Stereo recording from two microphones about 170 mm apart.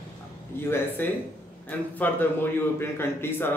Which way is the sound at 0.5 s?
15° left (ahead or behind).